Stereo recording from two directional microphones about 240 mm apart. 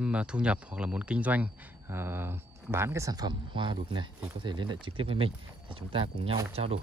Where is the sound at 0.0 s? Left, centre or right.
Centre.